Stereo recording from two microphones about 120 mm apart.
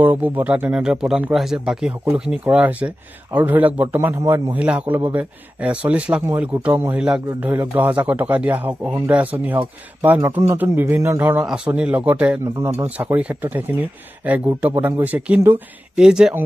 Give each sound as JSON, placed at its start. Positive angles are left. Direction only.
{"t": 0.0, "sound": "a man's voice", "side_deg": -15}